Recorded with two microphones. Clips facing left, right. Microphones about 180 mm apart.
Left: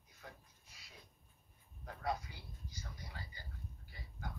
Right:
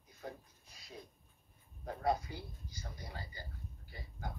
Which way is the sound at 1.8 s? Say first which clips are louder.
Right 6 dB; 35° right (ahead or behind).